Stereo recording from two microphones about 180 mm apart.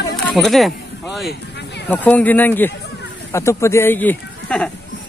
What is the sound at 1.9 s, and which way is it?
Speech, 10° left (ahead or behind).